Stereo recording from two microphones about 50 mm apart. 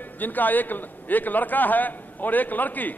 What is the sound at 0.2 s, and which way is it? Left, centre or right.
A man's voice, left.